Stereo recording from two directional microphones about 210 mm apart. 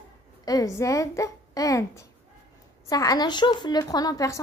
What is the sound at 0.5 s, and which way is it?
A woman's voice, 15° left (ahead or behind).